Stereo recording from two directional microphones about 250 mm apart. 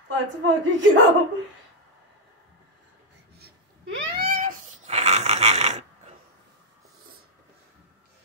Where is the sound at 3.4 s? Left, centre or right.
Right.